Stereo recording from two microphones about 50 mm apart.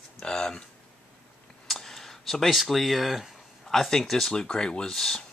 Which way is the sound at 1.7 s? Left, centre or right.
Centre.